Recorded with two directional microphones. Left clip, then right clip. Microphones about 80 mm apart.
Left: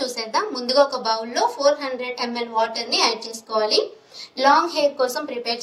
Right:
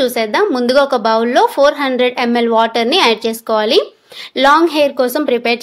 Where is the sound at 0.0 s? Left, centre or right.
Right.